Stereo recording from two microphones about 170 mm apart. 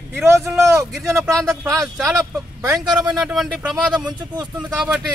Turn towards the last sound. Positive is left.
turn(degrees=-10)  # may be behind; listen again after turning